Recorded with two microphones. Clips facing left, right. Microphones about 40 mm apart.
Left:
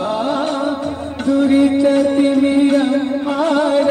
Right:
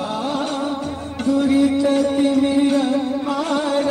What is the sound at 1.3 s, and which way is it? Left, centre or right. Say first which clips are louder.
Music: left 3 dB; left.